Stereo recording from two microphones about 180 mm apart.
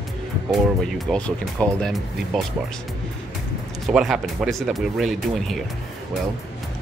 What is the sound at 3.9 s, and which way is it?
Speech, 5° right (ahead or behind).